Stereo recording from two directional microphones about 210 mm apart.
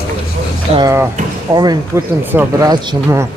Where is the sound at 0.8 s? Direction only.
15° right (ahead or behind).